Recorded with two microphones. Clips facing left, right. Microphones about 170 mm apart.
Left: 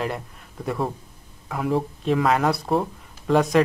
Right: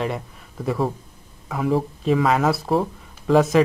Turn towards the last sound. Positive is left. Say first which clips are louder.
# right 2 dB
turn(degrees=0)  # may be behind; listen again after turning